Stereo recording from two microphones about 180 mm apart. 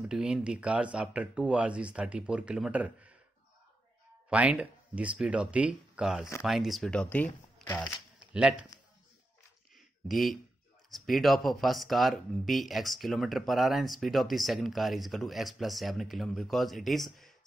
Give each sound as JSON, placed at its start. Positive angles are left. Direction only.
{"t": 0.0, "sound": "speech", "side_deg": -5}
{"t": 4.3, "sound": "speech", "side_deg": -5}
{"t": 8.3, "sound": "speech", "side_deg": -5}
{"t": 10.0, "sound": "speech", "side_deg": 0}